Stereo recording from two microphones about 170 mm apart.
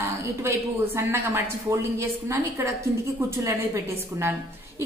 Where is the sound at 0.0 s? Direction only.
15° right (ahead or behind).